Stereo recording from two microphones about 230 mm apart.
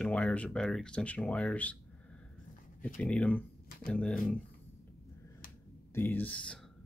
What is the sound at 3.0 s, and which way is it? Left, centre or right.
Speech, centre.